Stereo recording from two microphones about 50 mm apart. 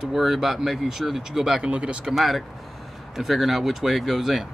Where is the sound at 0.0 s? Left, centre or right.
Centre.